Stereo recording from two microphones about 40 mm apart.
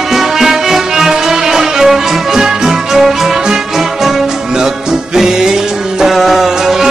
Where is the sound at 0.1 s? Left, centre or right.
Centre.